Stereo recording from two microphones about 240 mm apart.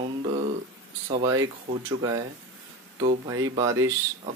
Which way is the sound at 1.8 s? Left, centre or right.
Centre.